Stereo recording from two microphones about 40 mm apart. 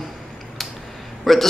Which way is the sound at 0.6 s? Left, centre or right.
Centre.